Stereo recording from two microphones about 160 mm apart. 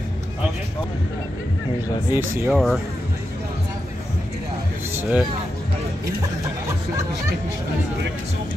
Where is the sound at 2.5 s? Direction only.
Centre (ahead or behind).